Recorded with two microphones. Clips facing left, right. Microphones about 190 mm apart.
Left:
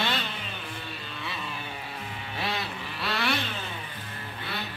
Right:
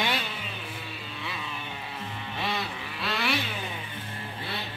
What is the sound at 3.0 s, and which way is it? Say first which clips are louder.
Vehicle: even; centre (ahead or behind).